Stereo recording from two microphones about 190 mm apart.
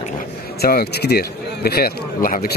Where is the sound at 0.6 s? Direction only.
55° left (ahead or behind).